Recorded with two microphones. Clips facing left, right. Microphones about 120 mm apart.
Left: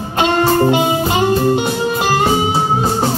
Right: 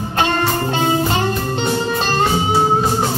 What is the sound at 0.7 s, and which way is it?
Music, 15° left (ahead or behind).